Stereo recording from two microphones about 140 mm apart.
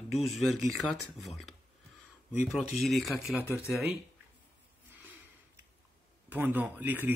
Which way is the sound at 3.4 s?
20° left (ahead or behind).